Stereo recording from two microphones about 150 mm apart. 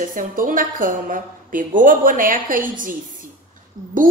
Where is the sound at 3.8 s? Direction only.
30° right (ahead or behind).